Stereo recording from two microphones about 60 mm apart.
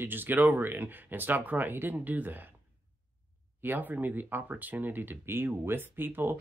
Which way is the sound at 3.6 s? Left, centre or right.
Right.